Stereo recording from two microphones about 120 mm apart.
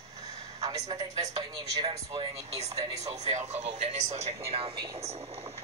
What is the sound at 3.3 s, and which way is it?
A woman's voice, 65° right (ahead or behind).